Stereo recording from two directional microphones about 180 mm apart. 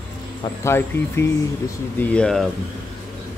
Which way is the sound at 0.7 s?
15° left (ahead or behind).